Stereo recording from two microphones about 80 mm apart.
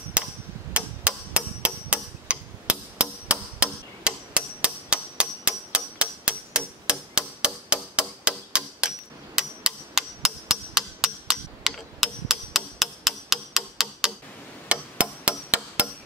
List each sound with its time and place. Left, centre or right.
0.2 s hammer: centre
14.7 s hammer: centre